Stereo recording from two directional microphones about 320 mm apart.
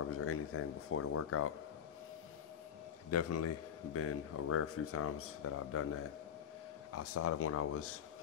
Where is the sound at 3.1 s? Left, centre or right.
Left.